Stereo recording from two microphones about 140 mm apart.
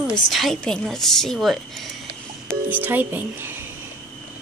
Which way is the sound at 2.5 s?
15° right (ahead or behind).